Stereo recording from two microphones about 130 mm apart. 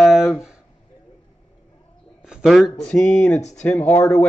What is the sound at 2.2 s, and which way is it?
Speech, centre (ahead or behind).